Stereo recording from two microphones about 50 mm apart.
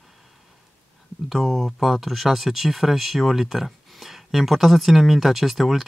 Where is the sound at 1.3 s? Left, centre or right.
Centre.